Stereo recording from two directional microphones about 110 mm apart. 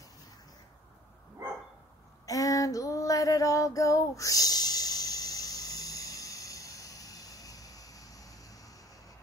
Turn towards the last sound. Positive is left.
turn(degrees=35)  # may be behind; listen again after turning